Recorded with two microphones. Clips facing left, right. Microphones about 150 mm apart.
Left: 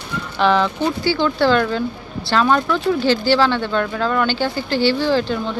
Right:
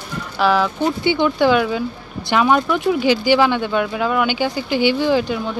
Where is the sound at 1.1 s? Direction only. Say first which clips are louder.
Right 1 dB; 15° right (ahead or behind).